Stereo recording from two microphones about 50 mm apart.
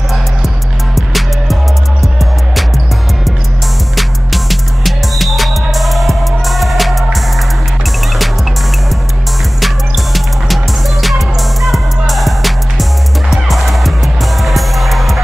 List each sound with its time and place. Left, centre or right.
0.9 s music: centre
3.9 s music: centre
9.6 s music: centre